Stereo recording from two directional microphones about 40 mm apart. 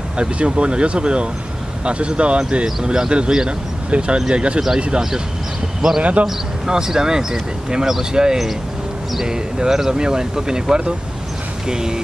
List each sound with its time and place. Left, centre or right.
0.2 s speech: right
3.9 s speech: right
5.8 s a man's voice: centre